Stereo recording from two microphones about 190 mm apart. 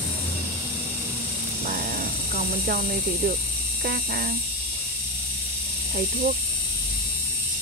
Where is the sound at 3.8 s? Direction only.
50° right (ahead or behind).